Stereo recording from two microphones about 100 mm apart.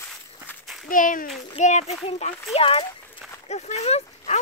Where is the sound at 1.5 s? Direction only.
90° left.